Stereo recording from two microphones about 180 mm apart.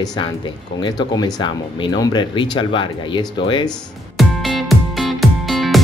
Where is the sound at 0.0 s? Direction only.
25° left (ahead or behind).